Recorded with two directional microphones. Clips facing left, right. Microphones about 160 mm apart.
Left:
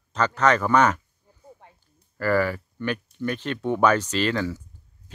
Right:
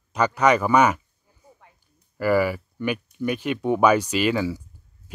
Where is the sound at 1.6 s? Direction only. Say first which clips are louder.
Left 3 dB; 30° left (ahead or behind).